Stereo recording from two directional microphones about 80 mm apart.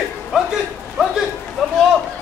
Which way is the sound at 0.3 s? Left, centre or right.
Centre.